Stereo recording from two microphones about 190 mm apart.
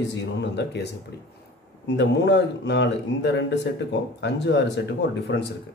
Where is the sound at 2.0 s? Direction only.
65° left (ahead or behind).